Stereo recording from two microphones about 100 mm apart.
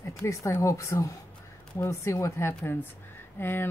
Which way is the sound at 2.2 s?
25° left (ahead or behind).